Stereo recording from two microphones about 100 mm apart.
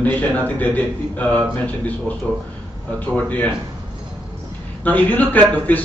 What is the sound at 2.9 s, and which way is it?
Speech, 15° left (ahead or behind).